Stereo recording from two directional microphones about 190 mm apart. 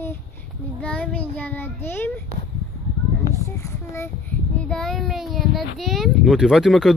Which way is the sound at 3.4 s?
15° left (ahead or behind).